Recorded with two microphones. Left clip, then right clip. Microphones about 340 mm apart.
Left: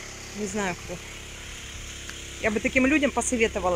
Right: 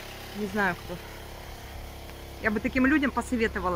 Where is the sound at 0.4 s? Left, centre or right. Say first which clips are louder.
Left 2 dB; right.